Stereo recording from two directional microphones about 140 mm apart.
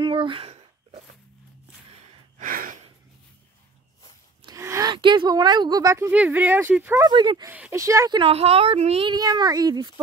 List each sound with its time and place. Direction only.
0.0 s a sound: 35° right (ahead or behind)
2.3 s gasp: 80° right
4.5 s a sound: 20° right (ahead or behind)
4.9 s speech: 35° right (ahead or behind); by 7.1 s 15° right (ahead or behind)
7.1 s speech: 30° right (ahead or behind)
7.4 s speech: 10° right (ahead or behind)
7.7 s speech: 20° right (ahead or behind)
8.2 s speech: 45° right (ahead or behind)
9.1 s speech: 30° right (ahead or behind)